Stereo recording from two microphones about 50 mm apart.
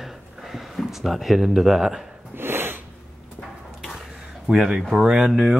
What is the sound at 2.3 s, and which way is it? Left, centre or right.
Snort, right.